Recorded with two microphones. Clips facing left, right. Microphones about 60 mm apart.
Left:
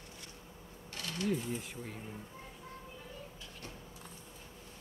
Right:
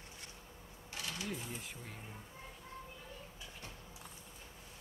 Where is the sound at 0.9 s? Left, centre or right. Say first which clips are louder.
Left 7 dB; centre.